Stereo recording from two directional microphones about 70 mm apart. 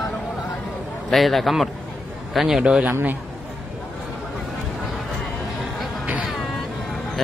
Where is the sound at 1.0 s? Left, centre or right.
Centre.